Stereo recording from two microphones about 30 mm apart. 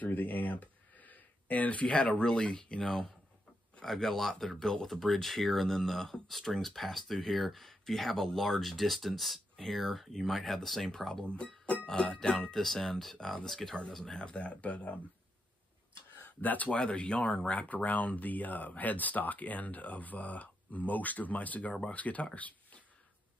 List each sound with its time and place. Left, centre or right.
0.0 s a sound: left
2.0 s speech: left
2.2 s speech: left
3.8 s speech: centre
10.9 s speech: centre
11.4 s speech: left
12.5 s speech: centre
14.2 s speech: left
16.3 s speech: left
16.8 s speech: left